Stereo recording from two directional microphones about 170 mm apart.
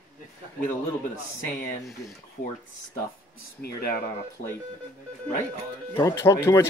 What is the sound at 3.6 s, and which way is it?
Speech, 65° left (ahead or behind).